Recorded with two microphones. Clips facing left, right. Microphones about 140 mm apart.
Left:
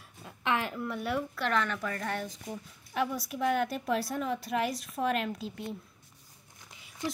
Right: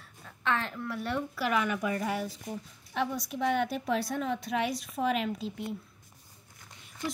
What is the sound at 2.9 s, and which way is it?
A woman's voice, centre (ahead or behind).